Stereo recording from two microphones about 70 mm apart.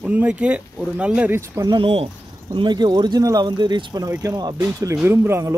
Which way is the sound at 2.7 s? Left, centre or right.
Right.